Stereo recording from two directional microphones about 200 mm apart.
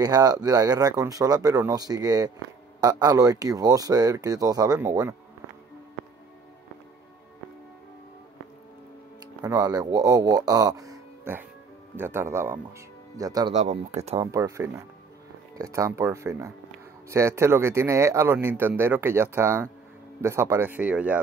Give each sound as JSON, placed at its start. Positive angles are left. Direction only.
{"t": 0.0, "sound": "speech", "side_deg": -20}
{"t": 9.4, "sound": "speech", "side_deg": -20}
{"t": 13.5, "sound": "speech", "side_deg": -35}
{"t": 14.2, "sound": "speech", "side_deg": -15}